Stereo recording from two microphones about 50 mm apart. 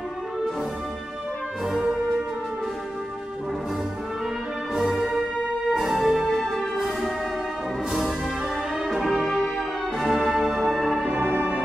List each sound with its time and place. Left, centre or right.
4.7 s music: centre
8.8 s music: centre
11.1 s music: right